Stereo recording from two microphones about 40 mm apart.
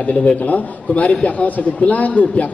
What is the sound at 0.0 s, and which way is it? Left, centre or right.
A man's voice, left.